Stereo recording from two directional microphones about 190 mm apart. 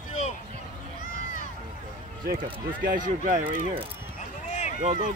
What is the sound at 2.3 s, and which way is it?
Speech, 25° right (ahead or behind).